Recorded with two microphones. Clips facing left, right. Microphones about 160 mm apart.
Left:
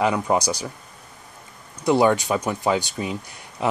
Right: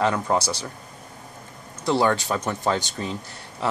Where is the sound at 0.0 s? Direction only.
15° left (ahead or behind).